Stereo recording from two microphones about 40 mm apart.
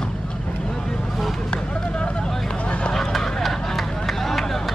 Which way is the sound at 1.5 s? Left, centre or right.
Left.